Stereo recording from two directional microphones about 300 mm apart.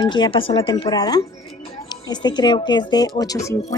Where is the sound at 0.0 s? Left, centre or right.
Centre.